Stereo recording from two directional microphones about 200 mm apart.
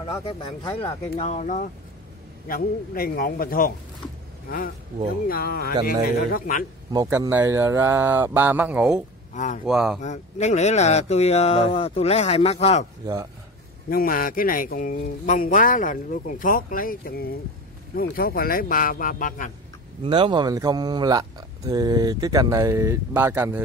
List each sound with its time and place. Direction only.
0.0 s speech: 25° left (ahead or behind); by 6.6 s 45° left (ahead or behind)
6.9 s speech: 15° right (ahead or behind)
9.3 s speech: 40° left (ahead or behind)
9.7 s speech: centre (ahead or behind)
10.0 s speech: 35° left (ahead or behind)
13.0 s speech: 15° right (ahead or behind)
13.8 s speech: 45° left (ahead or behind)
20.0 s speech: 25° right (ahead or behind)